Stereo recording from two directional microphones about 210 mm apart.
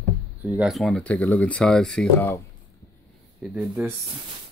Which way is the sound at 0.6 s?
Centre (ahead or behind).